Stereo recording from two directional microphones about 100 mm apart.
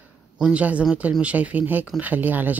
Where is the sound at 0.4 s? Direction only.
10° right (ahead or behind).